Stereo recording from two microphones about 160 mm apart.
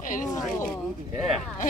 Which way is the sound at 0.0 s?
55° left (ahead or behind).